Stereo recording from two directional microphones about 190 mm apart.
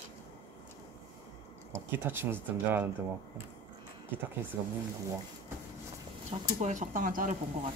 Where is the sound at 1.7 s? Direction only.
10° right (ahead or behind).